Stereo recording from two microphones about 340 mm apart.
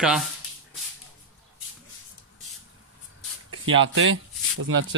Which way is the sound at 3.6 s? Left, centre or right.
Right.